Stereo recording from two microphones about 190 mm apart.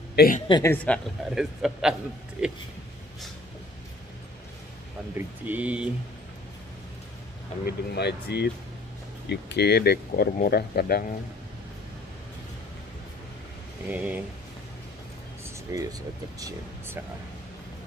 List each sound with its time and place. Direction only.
0.1 s a sound: 55° left (ahead or behind)
0.5 s a woman's voice: 20° left (ahead or behind)
0.8 s a man's voice: centre (ahead or behind)
5.1 s speech: 10° right (ahead or behind)
7.6 s speech: 60° left (ahead or behind)
13.8 s speech: 10° right (ahead or behind)
15.7 s speech: 15° right (ahead or behind)